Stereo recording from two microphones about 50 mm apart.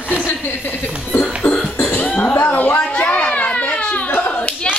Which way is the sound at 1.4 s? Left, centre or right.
Left.